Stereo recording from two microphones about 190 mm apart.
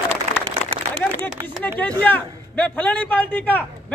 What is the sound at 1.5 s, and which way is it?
A man's voice, 10° left (ahead or behind).